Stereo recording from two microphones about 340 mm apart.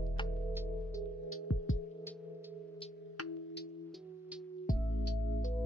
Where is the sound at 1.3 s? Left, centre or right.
Left.